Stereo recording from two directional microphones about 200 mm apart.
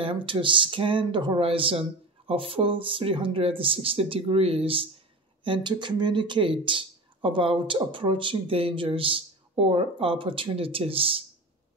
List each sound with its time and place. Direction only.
0.0 s speech: 25° right (ahead or behind)